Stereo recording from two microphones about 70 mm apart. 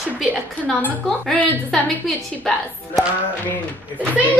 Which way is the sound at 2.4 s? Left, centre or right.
Centre.